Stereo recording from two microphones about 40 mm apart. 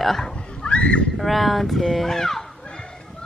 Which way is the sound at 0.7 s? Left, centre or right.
Left.